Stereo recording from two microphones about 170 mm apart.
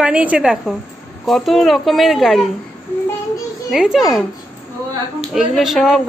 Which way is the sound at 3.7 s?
Centre (ahead or behind).